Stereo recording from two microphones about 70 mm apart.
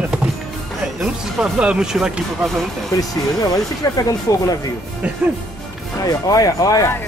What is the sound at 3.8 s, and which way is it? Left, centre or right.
Speech, left.